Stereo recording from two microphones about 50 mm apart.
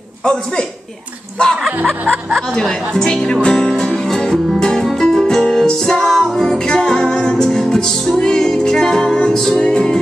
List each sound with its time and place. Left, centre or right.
0.2 s a woman's voice: centre
2.6 s a woman's voice: centre
3.7 s music: centre
9.6 s a woman's voice: centre